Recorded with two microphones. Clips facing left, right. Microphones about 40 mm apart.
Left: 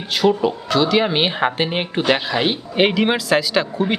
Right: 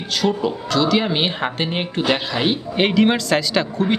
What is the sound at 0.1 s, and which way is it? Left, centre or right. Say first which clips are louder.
Speech: left 3 dB; centre.